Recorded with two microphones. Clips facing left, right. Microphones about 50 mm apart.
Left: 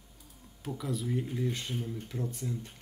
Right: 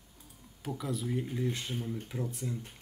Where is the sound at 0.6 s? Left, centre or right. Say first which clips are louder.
Even; centre.